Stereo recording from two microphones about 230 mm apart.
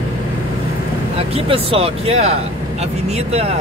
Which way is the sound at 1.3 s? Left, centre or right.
Right.